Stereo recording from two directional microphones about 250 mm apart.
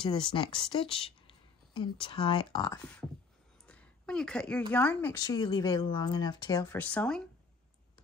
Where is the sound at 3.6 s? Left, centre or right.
Centre.